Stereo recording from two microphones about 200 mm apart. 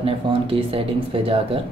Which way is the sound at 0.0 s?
25° right (ahead or behind).